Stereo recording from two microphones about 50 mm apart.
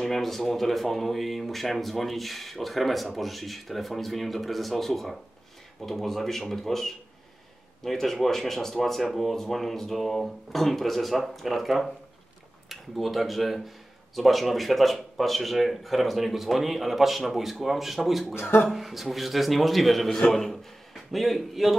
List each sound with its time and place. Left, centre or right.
0.0 s a man's voice: centre